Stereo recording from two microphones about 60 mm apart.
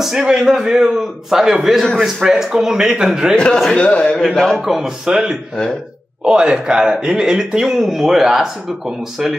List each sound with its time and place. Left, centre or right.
0.0 s speech: centre
3.7 s a man's voice: centre
4.6 s speech: centre